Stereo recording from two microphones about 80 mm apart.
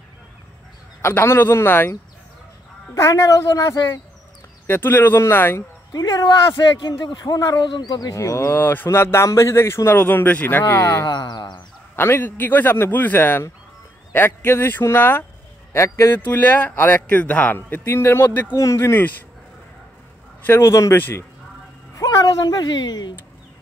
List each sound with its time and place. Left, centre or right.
1.0 s speech: left
2.9 s speech: left
4.6 s speech: left
5.9 s speech: left
6.2 s speech: left
8.1 s speech: left
10.7 s speech: left
11.1 s music: left
11.9 s speech: left
16.2 s speech: left
18.6 s speech: left
20.4 s speech: left
21.9 s speech: left